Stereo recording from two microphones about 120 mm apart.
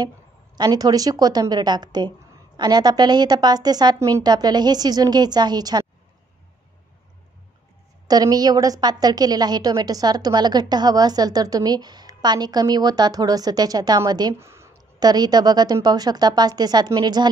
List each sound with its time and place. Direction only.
0.6 s a woman's voice: 30° right (ahead or behind)
8.1 s a woman's voice: 30° right (ahead or behind)
14.4 s a sound: 20° right (ahead or behind)
15.0 s a woman's voice: 35° right (ahead or behind)